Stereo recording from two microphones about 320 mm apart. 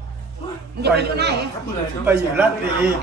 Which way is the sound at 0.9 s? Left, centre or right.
Right.